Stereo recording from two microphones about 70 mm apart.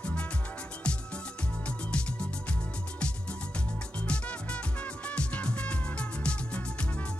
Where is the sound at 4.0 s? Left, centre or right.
Centre.